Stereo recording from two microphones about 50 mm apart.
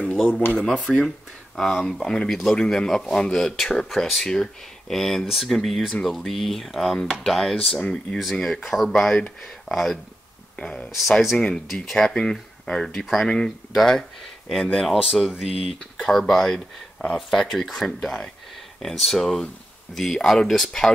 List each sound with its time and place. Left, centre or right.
0.7 s speech: centre
10.5 s speech: centre
10.9 s speech: centre
13.0 s speech: centre
14.5 s speech: centre
15.8 s speech: centre